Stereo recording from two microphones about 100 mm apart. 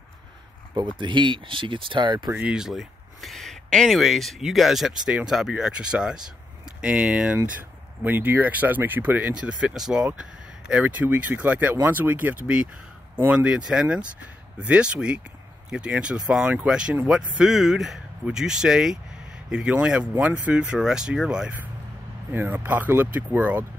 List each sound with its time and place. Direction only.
0.7 s speech: 50° right (ahead or behind)
2.3 s speech: 10° right (ahead or behind)